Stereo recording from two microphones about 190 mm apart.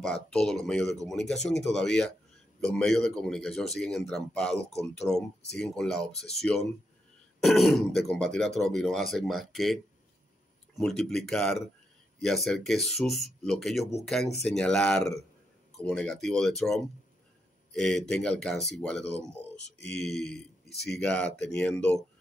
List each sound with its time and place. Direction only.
0.0 s speech: 5° left (ahead or behind)
0.8 s speech: 20° right (ahead or behind)
1.6 s speech: centre (ahead or behind)
10.8 s speech: centre (ahead or behind)
20.6 s speech: 60° left (ahead or behind)
21.0 s speech: 5° left (ahead or behind)